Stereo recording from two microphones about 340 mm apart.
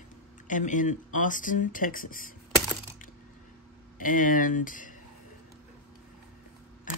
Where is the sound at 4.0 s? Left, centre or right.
Left.